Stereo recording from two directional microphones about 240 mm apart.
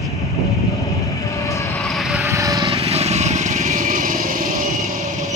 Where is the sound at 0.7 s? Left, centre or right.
Centre.